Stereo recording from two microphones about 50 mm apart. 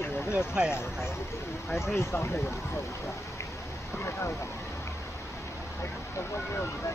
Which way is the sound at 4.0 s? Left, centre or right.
Left.